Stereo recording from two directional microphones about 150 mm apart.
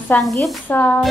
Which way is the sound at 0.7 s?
10° left (ahead or behind).